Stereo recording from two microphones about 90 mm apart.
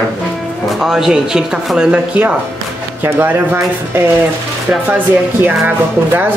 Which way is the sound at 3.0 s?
25° right (ahead or behind).